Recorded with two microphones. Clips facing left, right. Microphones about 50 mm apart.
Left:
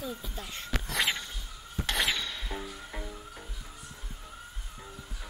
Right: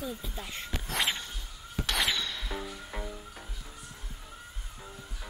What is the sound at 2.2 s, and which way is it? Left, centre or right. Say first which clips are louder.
Music: right 1 dB; left.